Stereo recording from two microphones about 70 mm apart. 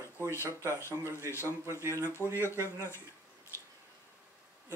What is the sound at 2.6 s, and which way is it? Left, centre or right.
Speech, left.